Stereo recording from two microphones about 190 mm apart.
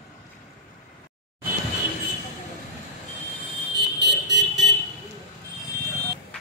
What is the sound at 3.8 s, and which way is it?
Car alarm, 65° right (ahead or behind).